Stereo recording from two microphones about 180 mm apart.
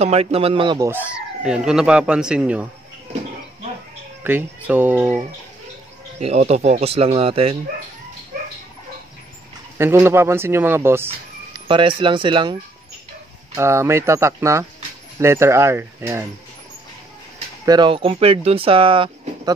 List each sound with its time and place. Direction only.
0.0 s speech: 35° right (ahead or behind)
0.8 s speech: 10° right (ahead or behind)
4.2 s speech: 10° right (ahead or behind)
6.1 s speech: 35° right (ahead or behind)
9.8 s speech: 15° right (ahead or behind)
11.6 s speech: 25° right (ahead or behind)
13.6 s speech: 15° right (ahead or behind)
17.6 s speech: 25° right (ahead or behind)